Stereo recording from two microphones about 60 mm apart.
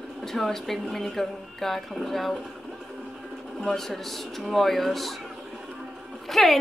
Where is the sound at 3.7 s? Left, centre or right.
Centre.